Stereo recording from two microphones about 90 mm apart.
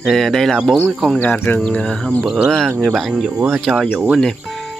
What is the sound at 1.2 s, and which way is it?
Speech, 20° left (ahead or behind).